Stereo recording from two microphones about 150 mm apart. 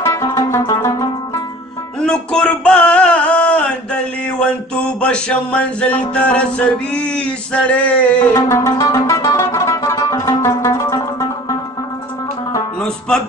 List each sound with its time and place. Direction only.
0.0 s music: 20° left (ahead or behind)
2.0 s music: 5° left (ahead or behind)
5.0 s music: 10° left (ahead or behind)